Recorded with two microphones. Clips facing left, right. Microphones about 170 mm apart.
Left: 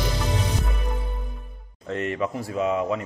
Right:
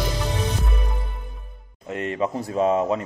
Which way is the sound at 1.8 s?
15° right (ahead or behind).